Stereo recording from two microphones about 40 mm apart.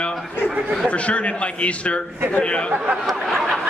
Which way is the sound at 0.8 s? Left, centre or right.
Left.